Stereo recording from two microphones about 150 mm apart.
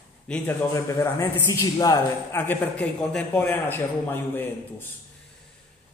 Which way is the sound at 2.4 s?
10° left (ahead or behind).